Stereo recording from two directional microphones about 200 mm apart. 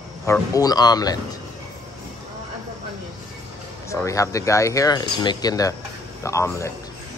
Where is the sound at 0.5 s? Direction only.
20° left (ahead or behind).